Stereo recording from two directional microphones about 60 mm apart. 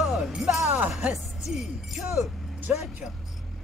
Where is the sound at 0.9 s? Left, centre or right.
Centre.